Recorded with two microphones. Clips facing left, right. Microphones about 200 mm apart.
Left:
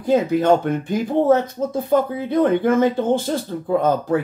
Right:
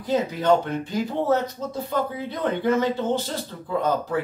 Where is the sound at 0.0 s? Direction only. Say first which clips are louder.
Left 6 dB; 50° left (ahead or behind).